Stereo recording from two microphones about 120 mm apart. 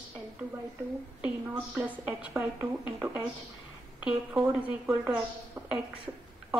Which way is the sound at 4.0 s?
15° right (ahead or behind).